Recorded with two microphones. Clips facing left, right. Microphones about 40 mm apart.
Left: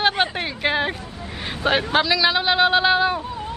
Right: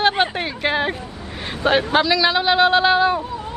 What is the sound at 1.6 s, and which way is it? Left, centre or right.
Speech, centre.